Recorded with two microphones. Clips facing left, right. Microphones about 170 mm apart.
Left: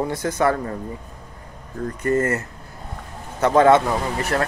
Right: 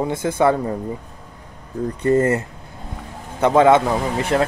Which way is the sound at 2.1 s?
20° right (ahead or behind).